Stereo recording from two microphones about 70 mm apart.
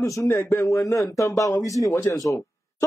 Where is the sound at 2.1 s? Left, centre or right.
Left.